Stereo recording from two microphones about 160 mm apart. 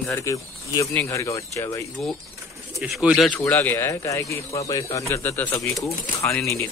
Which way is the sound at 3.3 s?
10° left (ahead or behind).